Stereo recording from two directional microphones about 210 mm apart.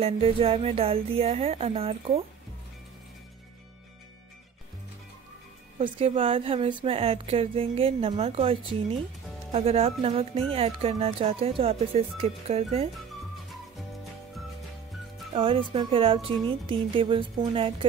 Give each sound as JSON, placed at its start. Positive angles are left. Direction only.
{"t": 0.0, "sound": "a woman's voice", "side_deg": -25}
{"t": 5.8, "sound": "a woman's voice", "side_deg": -25}
{"t": 15.3, "sound": "a woman's voice", "side_deg": -25}